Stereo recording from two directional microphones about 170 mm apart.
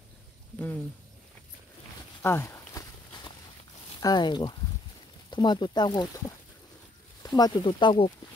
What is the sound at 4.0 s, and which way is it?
Speech, 25° left (ahead or behind).